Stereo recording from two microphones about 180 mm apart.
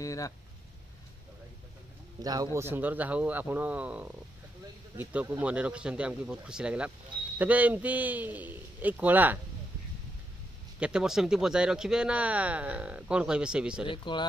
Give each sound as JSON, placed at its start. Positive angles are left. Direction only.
{"t": 0.0, "sound": "speech", "side_deg": 20}
{"t": 2.2, "sound": "a man's voice", "side_deg": -20}
{"t": 10.8, "sound": "speech", "side_deg": -5}
{"t": 13.8, "sound": "speech", "side_deg": 25}